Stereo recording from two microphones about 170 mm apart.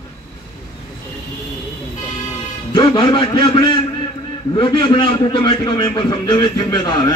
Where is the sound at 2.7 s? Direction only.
25° left (ahead or behind).